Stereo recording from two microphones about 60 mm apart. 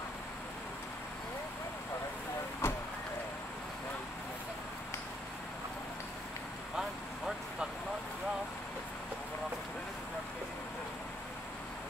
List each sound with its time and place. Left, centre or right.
2.6 s vehicle: left
6.8 s vehicle: centre